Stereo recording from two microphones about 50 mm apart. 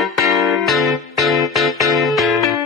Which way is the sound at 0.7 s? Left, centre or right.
Centre.